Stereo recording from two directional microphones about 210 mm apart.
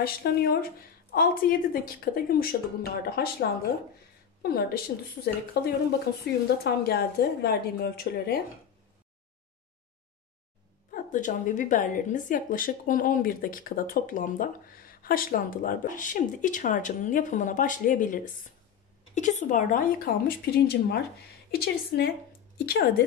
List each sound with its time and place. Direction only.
0.0 s a woman's voice: 45° left (ahead or behind)
10.9 s a woman's voice: 40° left (ahead or behind)